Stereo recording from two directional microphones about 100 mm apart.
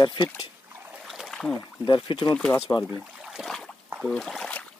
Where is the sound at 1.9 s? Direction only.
55° left (ahead or behind).